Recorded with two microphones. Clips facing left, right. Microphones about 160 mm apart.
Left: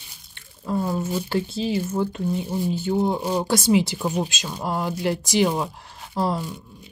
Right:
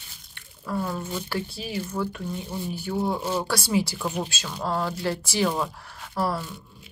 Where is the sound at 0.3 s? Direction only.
25° left (ahead or behind).